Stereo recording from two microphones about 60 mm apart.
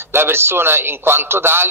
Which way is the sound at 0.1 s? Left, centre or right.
Right.